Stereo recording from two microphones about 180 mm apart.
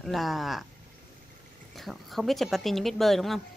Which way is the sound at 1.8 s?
Centre (ahead or behind).